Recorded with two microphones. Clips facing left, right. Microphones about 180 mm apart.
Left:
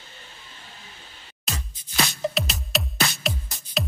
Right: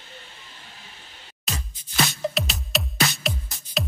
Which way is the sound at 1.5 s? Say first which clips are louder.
Right 1 dB; centre (ahead or behind).